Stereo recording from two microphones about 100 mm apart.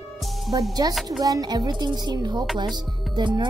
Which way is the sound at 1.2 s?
40° right (ahead or behind).